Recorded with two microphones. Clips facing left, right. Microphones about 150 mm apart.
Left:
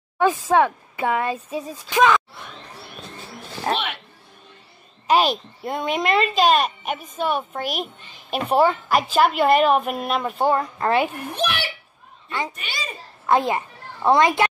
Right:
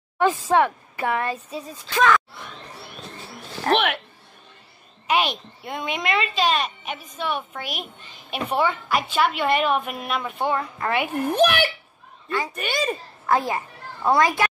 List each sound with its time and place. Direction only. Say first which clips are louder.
0.2 s speech: left 1 dB; 10° left (ahead or behind)
3.7 s speech: right 8 dB; 60° right (ahead or behind)
5.0 s a woman's voice: left 4 dB; 35° left (ahead or behind)
11.2 s speech: right 7 dB; 50° right (ahead or behind)
13.3 s a woman's voice: left 3 dB; 20° left (ahead or behind)